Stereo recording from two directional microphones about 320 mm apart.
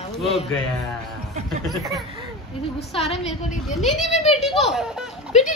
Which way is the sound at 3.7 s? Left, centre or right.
Centre.